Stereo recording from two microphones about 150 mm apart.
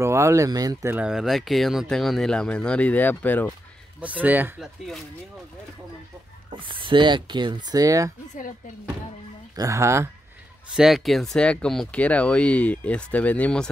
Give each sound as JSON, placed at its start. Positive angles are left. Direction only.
{"t": 0.0, "sound": "speech", "side_deg": -20}
{"t": 0.9, "sound": "speech", "side_deg": -5}
{"t": 4.0, "sound": "speech", "side_deg": -10}
{"t": 6.6, "sound": "speech", "side_deg": -35}
{"t": 9.6, "sound": "speech", "side_deg": -20}
{"t": 10.7, "sound": "speech", "side_deg": -5}